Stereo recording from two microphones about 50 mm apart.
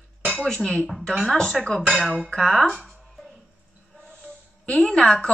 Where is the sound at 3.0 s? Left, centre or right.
Centre.